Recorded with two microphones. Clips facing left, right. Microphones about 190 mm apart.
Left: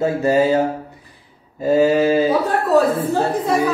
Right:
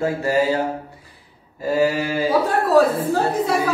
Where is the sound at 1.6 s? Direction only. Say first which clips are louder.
Left 5 dB; 20° left (ahead or behind).